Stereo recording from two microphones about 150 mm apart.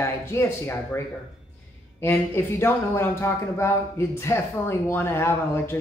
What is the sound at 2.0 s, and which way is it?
Speech, 15° left (ahead or behind).